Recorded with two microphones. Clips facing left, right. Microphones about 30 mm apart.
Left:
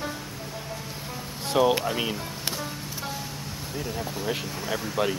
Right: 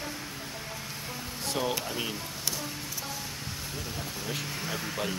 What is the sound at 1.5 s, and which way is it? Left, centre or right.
Speech, left.